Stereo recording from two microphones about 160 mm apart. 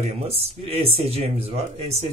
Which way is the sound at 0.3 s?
40° right (ahead or behind).